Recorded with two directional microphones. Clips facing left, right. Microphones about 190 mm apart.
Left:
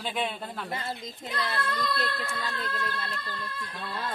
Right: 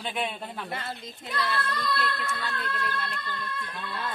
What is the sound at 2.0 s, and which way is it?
Speech, 35° left (ahead or behind).